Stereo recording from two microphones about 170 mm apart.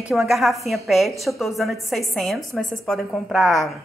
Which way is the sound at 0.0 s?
5° right (ahead or behind).